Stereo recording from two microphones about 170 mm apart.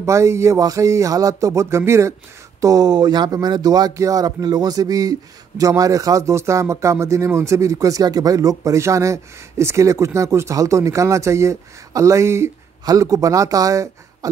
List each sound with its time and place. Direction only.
0.0 s speech: 15° right (ahead or behind)